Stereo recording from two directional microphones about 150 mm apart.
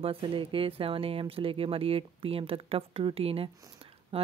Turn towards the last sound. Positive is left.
turn(degrees=-40)  # may be behind; listen again after turning